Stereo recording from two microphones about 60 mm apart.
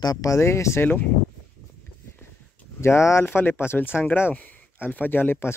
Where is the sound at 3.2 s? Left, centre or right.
Left.